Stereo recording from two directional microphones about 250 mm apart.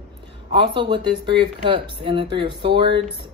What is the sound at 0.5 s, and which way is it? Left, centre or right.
A woman's voice, centre.